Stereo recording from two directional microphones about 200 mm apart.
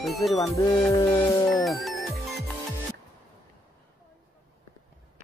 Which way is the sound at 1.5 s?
Centre (ahead or behind).